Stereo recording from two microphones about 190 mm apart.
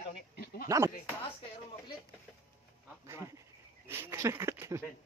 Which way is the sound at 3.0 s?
15° right (ahead or behind).